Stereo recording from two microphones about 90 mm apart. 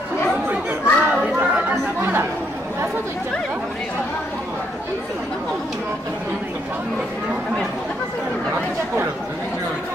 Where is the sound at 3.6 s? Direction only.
10° left (ahead or behind).